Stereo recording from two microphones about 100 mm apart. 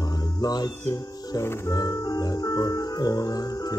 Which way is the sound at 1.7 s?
40° left (ahead or behind).